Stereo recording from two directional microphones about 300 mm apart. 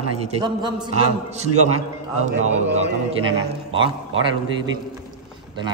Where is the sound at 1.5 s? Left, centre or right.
Right.